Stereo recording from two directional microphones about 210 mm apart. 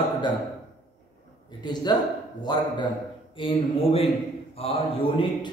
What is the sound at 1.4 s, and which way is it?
A man's voice, 20° left (ahead or behind).